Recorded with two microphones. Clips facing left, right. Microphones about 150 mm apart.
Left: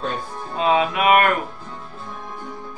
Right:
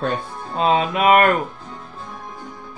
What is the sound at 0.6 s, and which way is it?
Speech, 35° right (ahead or behind).